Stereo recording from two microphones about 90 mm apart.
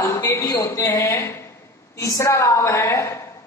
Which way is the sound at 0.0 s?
30° left (ahead or behind).